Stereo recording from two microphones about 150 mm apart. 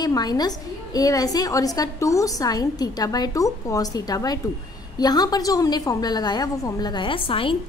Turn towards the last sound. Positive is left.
turn(degrees=35)  # may be behind; listen again after turning